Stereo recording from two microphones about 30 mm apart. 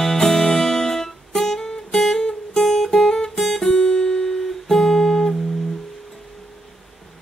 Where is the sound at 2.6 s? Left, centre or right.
Centre.